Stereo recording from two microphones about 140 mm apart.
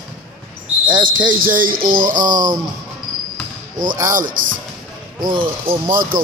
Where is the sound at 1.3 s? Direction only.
80° right.